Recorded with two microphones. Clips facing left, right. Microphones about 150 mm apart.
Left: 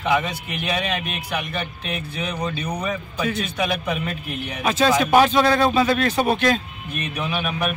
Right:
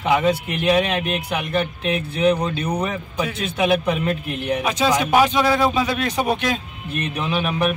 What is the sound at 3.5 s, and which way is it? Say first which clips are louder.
A man's voice: right 5 dB; 25° right (ahead or behind).